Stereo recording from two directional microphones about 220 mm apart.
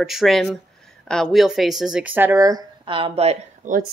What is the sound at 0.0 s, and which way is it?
Speech, centre (ahead or behind).